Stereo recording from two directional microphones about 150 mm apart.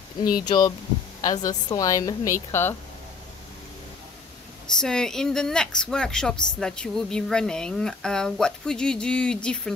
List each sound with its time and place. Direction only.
0.5 s a woman's voice: 30° left (ahead or behind)
4.7 s speech: 5° left (ahead or behind)